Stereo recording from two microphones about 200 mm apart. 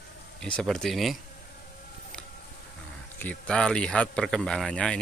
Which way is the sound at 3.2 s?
5° left (ahead or behind).